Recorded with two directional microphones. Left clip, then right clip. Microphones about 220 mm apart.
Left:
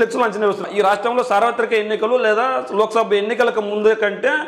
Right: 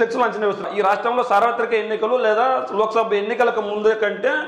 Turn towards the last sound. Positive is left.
turn(degrees=35)  # may be behind; listen again after turning